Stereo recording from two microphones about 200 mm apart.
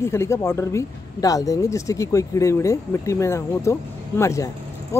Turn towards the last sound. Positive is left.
turn(degrees=15)  # may be behind; listen again after turning